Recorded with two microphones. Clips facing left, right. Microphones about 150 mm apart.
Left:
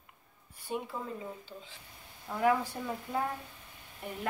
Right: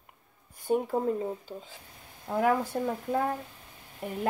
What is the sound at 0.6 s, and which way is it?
Speech, 45° right (ahead or behind).